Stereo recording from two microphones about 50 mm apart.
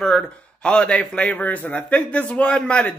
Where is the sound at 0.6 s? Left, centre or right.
Left.